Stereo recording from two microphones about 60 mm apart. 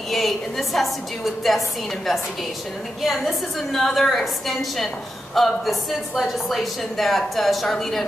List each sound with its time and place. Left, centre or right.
0.1 s a woman's voice: centre
3.0 s a woman's voice: centre